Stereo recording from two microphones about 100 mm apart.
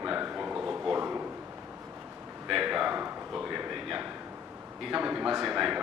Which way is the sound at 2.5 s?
5° right (ahead or behind).